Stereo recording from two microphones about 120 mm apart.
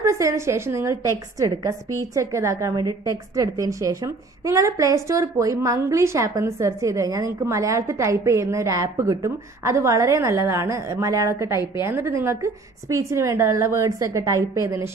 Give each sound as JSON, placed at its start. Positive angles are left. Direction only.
{"t": 0.0, "sound": "a woman's voice", "side_deg": -25}